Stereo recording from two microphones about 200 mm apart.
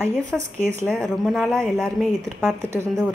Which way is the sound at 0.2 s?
35° right (ahead or behind).